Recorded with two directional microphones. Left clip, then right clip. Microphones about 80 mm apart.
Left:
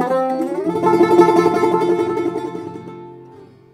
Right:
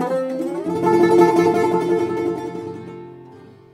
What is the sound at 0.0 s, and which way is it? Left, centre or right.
Music, right.